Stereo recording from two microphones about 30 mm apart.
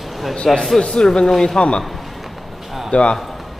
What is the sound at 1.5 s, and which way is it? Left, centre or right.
Speech, left.